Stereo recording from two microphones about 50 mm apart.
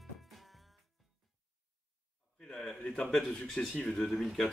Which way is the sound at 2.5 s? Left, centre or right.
Centre.